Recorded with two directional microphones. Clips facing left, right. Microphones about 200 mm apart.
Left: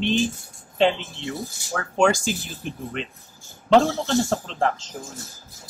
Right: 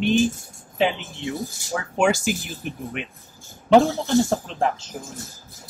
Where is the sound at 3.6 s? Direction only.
10° right (ahead or behind).